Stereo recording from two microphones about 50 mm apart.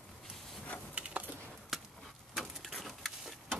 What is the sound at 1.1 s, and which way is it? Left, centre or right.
Typing, right.